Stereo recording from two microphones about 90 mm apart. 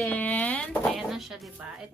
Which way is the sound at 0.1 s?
20° left (ahead or behind).